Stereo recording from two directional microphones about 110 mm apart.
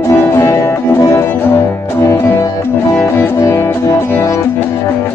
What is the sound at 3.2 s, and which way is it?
Music, 25° left (ahead or behind).